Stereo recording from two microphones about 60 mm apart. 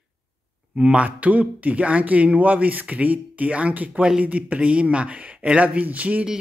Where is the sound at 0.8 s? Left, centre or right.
Right.